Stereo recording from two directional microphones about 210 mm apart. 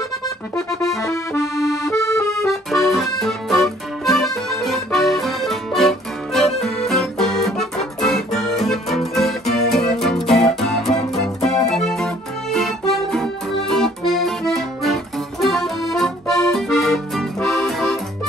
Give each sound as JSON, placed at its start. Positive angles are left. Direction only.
{"t": 1.1, "sound": "accordion", "side_deg": 15}
{"t": 2.7, "sound": "accordion", "side_deg": 0}